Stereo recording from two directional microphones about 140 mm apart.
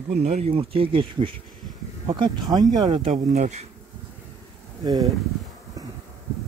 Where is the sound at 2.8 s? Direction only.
40° right (ahead or behind).